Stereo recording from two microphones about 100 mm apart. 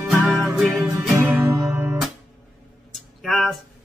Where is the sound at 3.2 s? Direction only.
Centre (ahead or behind).